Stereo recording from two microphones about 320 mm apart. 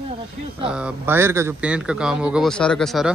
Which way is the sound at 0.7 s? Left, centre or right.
Centre.